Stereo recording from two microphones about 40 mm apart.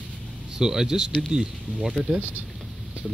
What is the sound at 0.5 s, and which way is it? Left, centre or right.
Speech, centre.